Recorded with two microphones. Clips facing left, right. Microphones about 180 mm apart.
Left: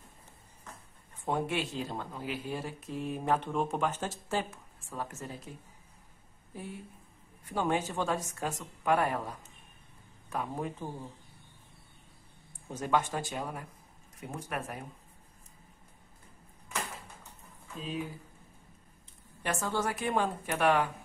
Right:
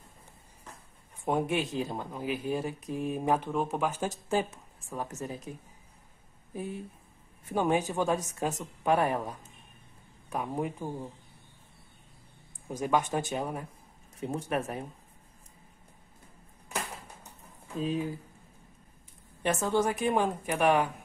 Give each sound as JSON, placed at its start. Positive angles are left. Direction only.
{"t": 1.2, "sound": "speech", "side_deg": -15}
{"t": 3.4, "sound": "speech", "side_deg": -5}
{"t": 6.5, "sound": "a woman's voice", "side_deg": -20}
{"t": 12.6, "sound": "a woman's voice", "side_deg": -10}
{"t": 19.4, "sound": "a woman's voice", "side_deg": -20}